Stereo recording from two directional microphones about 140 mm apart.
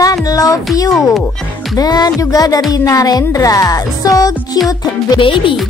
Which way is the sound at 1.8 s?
30° left (ahead or behind).